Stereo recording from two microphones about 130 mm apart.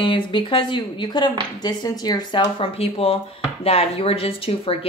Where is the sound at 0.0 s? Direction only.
40° left (ahead or behind).